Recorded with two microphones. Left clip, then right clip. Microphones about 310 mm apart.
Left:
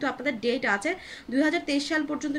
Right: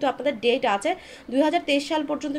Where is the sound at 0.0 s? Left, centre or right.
Centre.